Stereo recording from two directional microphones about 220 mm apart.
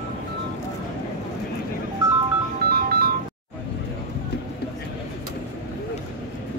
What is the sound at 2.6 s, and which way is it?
Music, 45° right (ahead or behind).